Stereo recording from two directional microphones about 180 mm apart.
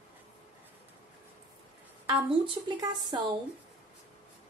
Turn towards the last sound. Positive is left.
turn(degrees=-25)  # may be behind; listen again after turning